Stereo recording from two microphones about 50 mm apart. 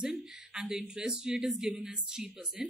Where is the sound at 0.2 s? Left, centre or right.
Centre.